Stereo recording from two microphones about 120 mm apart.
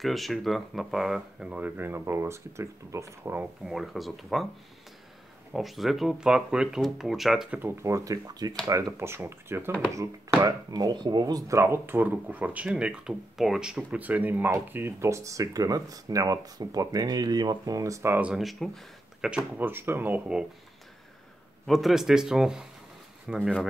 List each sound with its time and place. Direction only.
0.0 s speech: centre (ahead or behind); by 3.4 s 20° right (ahead or behind)
3.6 s speech: centre (ahead or behind)
5.5 s speech: centre (ahead or behind)
7.5 s speech: 20° right (ahead or behind)
10.4 s speech: 30° right (ahead or behind)
18.2 s speech: centre (ahead or behind)
19.2 s speech: 10° right (ahead or behind)
21.6 s speech: centre (ahead or behind)